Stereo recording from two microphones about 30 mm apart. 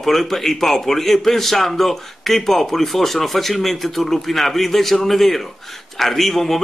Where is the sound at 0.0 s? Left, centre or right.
Centre.